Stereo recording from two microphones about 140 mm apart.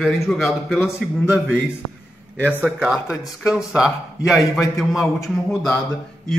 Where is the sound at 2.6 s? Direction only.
5° right (ahead or behind).